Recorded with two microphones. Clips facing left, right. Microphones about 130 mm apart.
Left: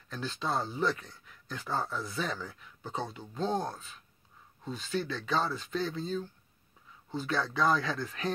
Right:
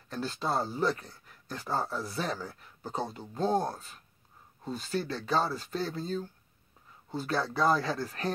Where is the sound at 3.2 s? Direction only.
5° right (ahead or behind).